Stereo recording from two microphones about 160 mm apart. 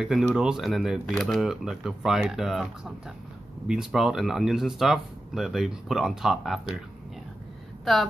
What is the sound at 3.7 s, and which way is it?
Speech, 5° right (ahead or behind).